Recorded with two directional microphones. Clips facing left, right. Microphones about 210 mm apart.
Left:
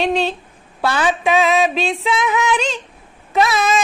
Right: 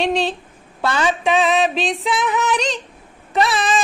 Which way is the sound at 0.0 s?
Centre (ahead or behind).